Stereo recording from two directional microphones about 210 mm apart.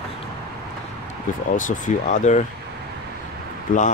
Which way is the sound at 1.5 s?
40° left (ahead or behind).